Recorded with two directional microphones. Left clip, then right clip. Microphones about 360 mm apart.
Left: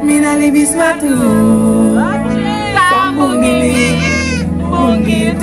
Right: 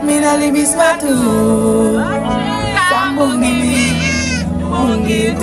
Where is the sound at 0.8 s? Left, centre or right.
Centre.